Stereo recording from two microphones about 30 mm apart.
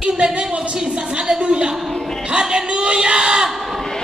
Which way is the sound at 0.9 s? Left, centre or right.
Right.